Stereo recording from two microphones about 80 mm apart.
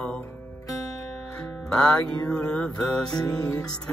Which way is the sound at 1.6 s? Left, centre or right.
Centre.